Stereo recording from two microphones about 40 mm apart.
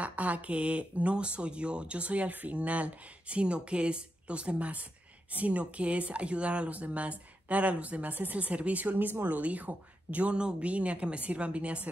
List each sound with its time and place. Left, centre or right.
0.0 s speech: right
10.3 s speech: right